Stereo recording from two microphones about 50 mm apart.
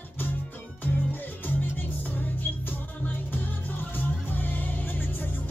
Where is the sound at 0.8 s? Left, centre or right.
Left.